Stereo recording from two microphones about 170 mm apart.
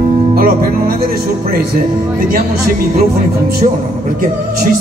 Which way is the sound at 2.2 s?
55° right (ahead or behind).